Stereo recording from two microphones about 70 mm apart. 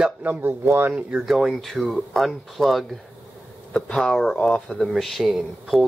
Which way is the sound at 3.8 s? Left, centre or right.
Centre.